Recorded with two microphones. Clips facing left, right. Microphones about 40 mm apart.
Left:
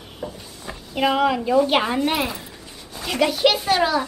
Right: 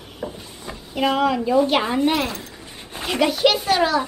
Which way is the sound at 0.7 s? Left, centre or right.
Centre.